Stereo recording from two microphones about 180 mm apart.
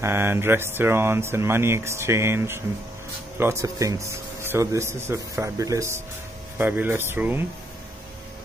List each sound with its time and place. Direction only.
0.0 s speech: 15° right (ahead or behind)